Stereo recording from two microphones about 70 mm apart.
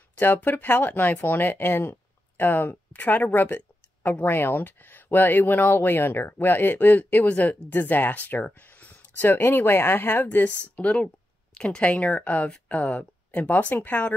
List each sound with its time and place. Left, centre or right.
0.2 s speech: left